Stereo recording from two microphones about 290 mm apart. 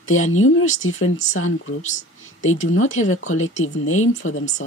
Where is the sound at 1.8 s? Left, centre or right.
Left.